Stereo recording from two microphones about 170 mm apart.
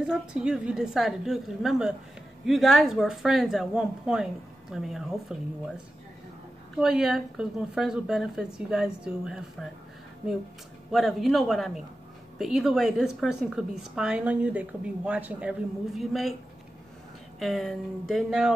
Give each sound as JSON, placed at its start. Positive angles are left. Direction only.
{"t": 0.0, "sound": "a woman's voice", "side_deg": -5}
{"t": 6.8, "sound": "a woman's voice", "side_deg": 0}
{"t": 10.9, "sound": "a woman's voice", "side_deg": 0}
{"t": 17.4, "sound": "a woman's voice", "side_deg": 0}